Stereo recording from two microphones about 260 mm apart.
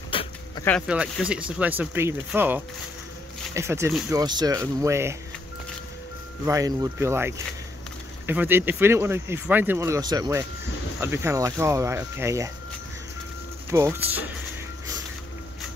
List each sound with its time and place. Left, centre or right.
0.1 s a sound: centre
0.7 s speech: centre
6.4 s speech: centre
13.7 s speech: centre